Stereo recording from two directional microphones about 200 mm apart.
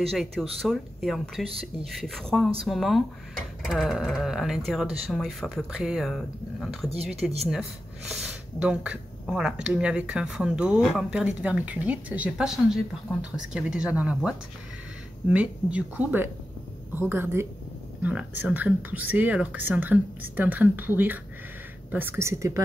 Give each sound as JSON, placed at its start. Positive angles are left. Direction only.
{"t": 0.1, "sound": "speech", "side_deg": 0}
{"t": 15.3, "sound": "speech", "side_deg": -5}